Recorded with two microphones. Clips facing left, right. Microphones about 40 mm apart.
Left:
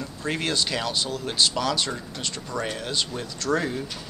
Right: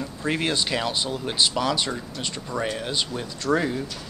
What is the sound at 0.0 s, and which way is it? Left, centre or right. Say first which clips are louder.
Speech: right 2 dB; centre.